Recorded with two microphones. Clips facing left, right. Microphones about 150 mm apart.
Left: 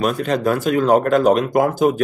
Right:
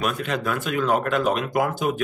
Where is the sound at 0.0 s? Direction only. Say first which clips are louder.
Left 7 dB; 35° left (ahead or behind).